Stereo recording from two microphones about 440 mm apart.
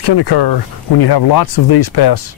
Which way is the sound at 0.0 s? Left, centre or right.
Left.